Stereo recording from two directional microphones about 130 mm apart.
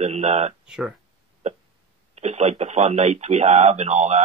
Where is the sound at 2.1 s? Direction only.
55° right (ahead or behind).